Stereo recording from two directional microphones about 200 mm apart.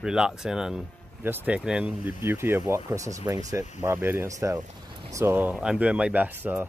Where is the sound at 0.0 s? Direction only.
5° right (ahead or behind).